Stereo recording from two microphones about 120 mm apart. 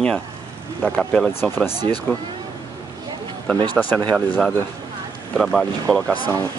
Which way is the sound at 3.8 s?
10° left (ahead or behind).